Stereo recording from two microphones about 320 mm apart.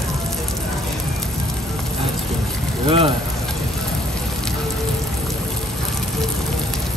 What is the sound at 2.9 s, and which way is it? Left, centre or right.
Speech, centre.